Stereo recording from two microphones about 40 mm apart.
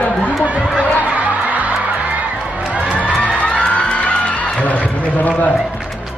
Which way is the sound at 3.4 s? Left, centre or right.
Left.